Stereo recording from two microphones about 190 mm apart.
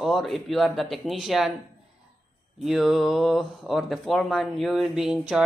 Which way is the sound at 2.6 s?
Centre (ahead or behind).